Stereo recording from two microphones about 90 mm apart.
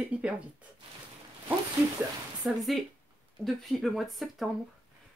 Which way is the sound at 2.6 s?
Centre (ahead or behind).